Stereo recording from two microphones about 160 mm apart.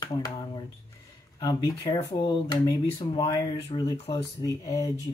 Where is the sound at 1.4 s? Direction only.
20° left (ahead or behind).